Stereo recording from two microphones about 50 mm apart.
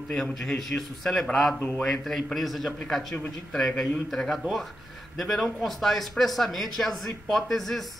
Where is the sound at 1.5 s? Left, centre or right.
Left.